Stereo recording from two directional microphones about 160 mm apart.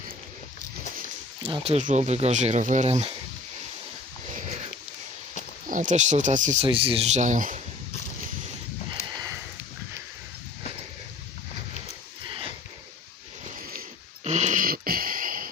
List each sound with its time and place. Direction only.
1.4 s speech: 35° right (ahead or behind)
5.7 s speech: 50° right (ahead or behind)
6.6 s speech: 35° right (ahead or behind); by 7.6 s 55° right (ahead or behind)
14.2 s a sound: 45° right (ahead or behind)